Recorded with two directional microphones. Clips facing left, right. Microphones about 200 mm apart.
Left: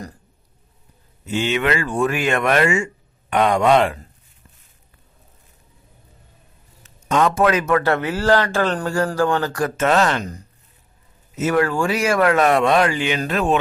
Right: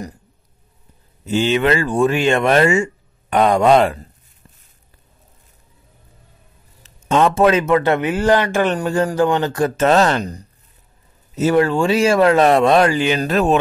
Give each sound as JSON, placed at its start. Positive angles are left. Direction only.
{"t": 1.2, "sound": "speech", "side_deg": -35}
{"t": 6.8, "sound": "a man's voice", "side_deg": -30}